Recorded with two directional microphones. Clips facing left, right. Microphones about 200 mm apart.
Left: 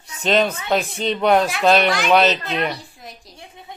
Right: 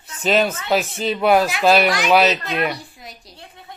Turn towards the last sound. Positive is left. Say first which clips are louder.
# left 1 dB
turn(degrees=15)  # may be behind; listen again after turning